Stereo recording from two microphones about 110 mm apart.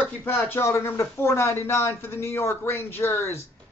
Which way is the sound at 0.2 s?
20° left (ahead or behind).